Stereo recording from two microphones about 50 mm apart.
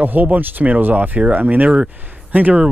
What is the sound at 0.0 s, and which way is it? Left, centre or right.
Speech, right.